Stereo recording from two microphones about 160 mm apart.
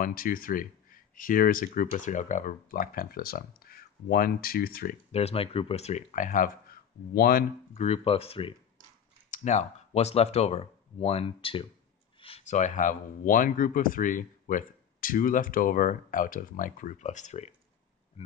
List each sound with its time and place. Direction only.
0.0 s speech: 60° left (ahead or behind)
5.1 s speech: 40° left (ahead or behind); by 7.4 s 65° left (ahead or behind)
7.7 s speech: 40° left (ahead or behind)
9.3 s speech: 50° left (ahead or behind)